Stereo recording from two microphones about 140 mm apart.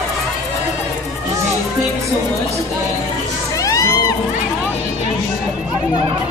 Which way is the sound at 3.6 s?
25° left (ahead or behind).